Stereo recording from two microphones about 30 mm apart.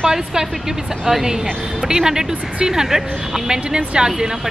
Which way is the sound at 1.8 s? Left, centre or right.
Right.